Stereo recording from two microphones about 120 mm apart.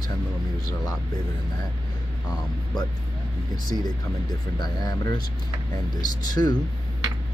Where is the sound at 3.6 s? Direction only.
35° left (ahead or behind).